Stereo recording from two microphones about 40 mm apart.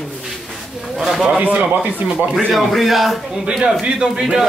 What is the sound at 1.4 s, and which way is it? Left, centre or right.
Speech, right.